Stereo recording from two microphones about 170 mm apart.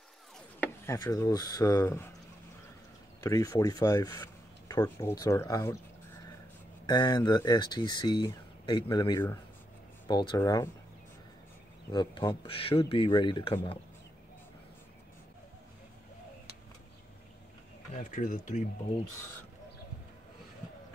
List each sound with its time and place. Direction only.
0.6 s speech: 15° left (ahead or behind)
3.2 s speech: 20° left (ahead or behind)
6.9 s speech: 25° left (ahead or behind)
11.9 s speech: 25° left (ahead or behind)
17.9 s speech: 50° left (ahead or behind)